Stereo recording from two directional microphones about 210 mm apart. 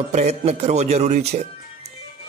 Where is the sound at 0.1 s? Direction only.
30° right (ahead or behind).